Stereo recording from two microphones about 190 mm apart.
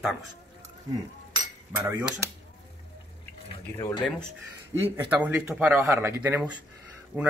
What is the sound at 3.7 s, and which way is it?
Speech, 20° left (ahead or behind).